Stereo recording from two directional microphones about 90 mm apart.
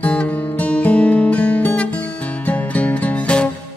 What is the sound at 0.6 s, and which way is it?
Guitar, 15° left (ahead or behind).